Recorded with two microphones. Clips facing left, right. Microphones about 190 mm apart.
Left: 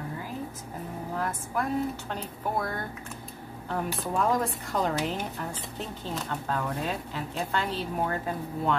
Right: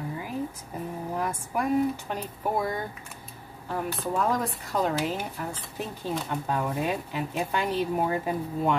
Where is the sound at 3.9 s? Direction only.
Centre (ahead or behind).